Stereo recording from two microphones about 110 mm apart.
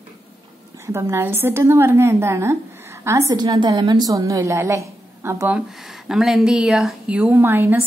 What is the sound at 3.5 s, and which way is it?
A woman's voice, 40° right (ahead or behind).